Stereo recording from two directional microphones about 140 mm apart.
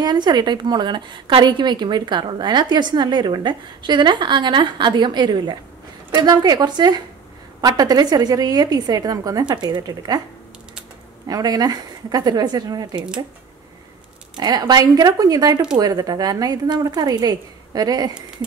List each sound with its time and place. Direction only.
0.0 s a woman's voice: 30° right (ahead or behind)
11.2 s a woman's voice: 25° right (ahead or behind)
14.3 s a woman's voice: 30° right (ahead or behind)